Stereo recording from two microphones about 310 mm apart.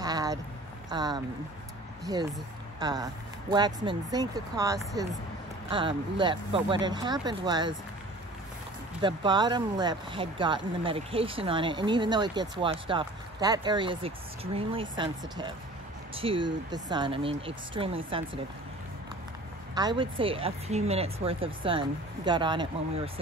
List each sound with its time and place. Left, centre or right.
0.0 s a sound: centre
0.8 s speech: centre
9.0 s speech: centre
19.7 s speech: centre